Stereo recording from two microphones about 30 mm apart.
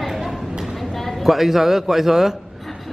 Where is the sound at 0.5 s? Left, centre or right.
Centre.